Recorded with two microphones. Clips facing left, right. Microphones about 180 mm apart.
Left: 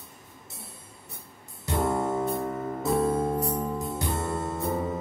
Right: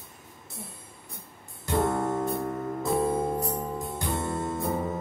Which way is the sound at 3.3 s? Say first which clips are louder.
Left 2 dB; centre (ahead or behind).